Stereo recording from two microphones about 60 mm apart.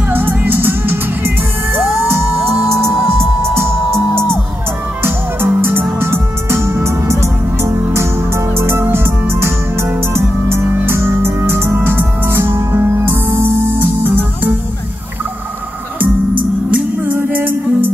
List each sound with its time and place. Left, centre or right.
0.1 s music: right
14.0 s music: right
16.7 s music: right